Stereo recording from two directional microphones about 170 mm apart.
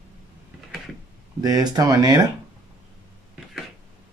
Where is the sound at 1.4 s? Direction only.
20° right (ahead or behind).